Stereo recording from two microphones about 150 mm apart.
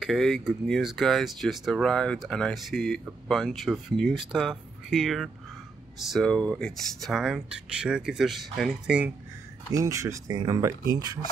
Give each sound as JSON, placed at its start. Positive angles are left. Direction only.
{"t": 0.0, "sound": "speech", "side_deg": 0}
{"t": 9.7, "sound": "speech", "side_deg": -20}